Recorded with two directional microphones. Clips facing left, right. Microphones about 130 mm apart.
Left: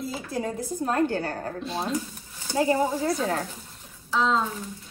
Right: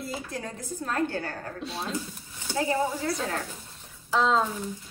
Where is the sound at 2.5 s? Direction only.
30° left (ahead or behind).